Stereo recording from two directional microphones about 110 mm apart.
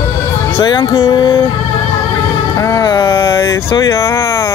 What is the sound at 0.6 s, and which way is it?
Music, 50° left (ahead or behind).